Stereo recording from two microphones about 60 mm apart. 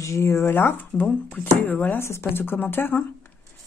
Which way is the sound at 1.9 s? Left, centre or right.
Left.